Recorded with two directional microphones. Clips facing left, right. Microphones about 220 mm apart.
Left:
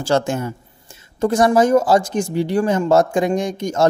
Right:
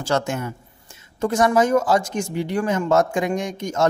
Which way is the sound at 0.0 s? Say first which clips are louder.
Left 4 dB; 30° left (ahead or behind).